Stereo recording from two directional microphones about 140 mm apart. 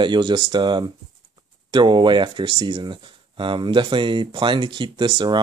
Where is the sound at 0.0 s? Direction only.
35° right (ahead or behind).